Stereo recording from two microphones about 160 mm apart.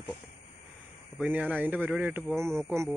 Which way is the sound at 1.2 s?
10° right (ahead or behind).